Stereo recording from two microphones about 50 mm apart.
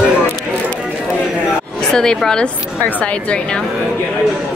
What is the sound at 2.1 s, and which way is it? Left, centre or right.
Speech, centre.